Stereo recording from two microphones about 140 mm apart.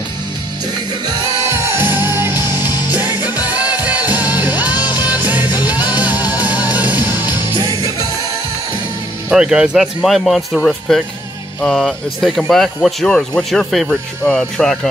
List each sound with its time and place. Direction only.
1.8 s music: 15° right (ahead or behind)
4.1 s music: 10° right (ahead or behind)
7.1 s music: 30° left (ahead or behind)
9.3 s speech: 5° right (ahead or behind)